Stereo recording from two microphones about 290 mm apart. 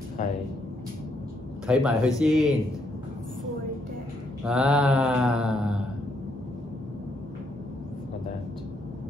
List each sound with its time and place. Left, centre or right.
0.2 s a sound: left
1.7 s mantra: centre
4.5 s mantra: centre